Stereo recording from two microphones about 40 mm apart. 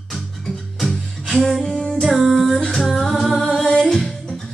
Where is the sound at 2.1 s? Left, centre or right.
Centre.